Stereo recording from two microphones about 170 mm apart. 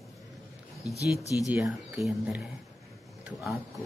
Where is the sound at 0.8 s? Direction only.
20° left (ahead or behind).